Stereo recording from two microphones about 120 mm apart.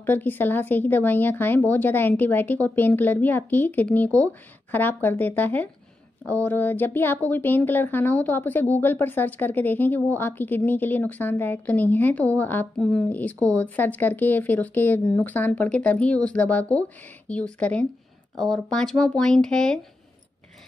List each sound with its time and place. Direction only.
0.0 s speech: 15° left (ahead or behind)